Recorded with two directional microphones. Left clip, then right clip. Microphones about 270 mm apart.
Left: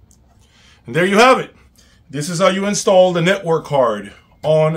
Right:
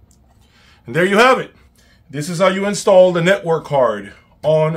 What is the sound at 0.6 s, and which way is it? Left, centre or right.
A man's voice, centre.